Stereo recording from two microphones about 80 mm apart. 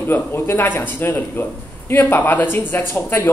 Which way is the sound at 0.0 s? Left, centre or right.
Left.